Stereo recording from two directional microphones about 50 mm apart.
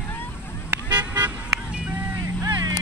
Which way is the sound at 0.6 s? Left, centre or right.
Right.